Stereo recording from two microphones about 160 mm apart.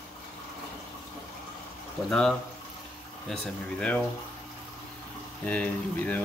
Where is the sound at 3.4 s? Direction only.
5° left (ahead or behind).